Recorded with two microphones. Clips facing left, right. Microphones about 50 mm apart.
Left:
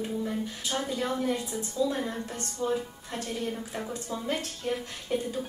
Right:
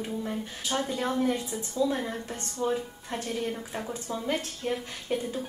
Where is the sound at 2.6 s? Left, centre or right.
Right.